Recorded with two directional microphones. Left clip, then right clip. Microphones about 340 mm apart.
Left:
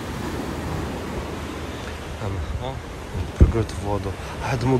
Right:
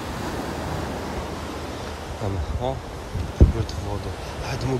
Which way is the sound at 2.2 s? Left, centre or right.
Centre.